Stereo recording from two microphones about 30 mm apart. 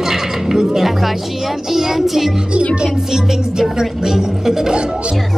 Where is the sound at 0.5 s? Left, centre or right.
Right.